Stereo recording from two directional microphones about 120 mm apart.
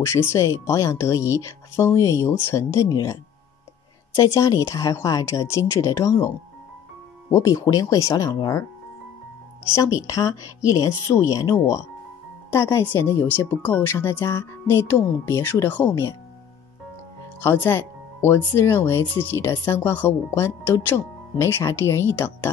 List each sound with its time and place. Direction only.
0.0 s speech: 20° left (ahead or behind)
9.8 s speech: 25° left (ahead or behind)
17.4 s speech: 20° left (ahead or behind)